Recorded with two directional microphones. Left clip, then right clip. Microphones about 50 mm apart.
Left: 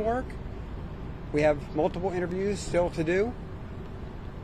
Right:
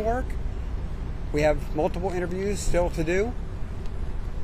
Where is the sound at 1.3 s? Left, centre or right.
Right.